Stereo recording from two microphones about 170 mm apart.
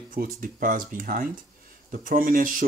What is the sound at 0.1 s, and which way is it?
Speech, 55° right (ahead or behind).